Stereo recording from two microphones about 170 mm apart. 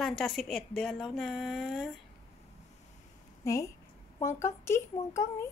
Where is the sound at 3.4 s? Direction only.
20° left (ahead or behind).